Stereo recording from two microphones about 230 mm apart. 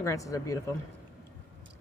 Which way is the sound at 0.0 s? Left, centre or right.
Centre.